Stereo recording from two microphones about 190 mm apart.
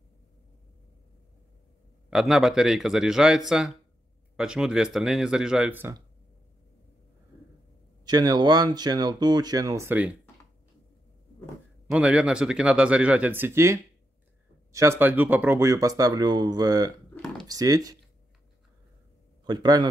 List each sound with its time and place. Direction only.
2.0 s speech: centre (ahead or behind)
8.0 s speech: 20° right (ahead or behind)
11.9 s speech: 5° right (ahead or behind)
17.1 s a sound: 10° left (ahead or behind)
17.5 s speech: 20° right (ahead or behind)
19.4 s speech: 20° right (ahead or behind)